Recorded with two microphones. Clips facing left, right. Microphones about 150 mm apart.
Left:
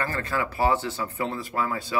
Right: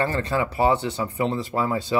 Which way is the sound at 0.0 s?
25° right (ahead or behind).